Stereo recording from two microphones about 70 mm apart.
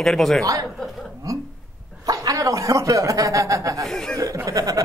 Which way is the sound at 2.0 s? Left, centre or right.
Right.